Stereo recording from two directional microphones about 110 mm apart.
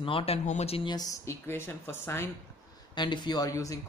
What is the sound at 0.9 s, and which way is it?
Speech, 35° left (ahead or behind).